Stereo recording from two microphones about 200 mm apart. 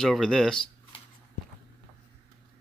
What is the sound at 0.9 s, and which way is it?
Walk, 25° left (ahead or behind).